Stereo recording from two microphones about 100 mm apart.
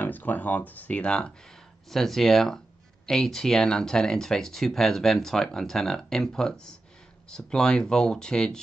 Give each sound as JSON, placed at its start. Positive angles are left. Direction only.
{"t": 0.0, "sound": "speech", "side_deg": 20}